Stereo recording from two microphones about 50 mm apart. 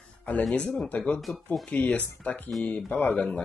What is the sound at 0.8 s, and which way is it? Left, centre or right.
Speech, left.